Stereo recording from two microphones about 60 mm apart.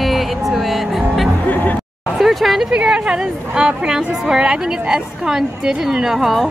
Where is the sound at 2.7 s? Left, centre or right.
Centre.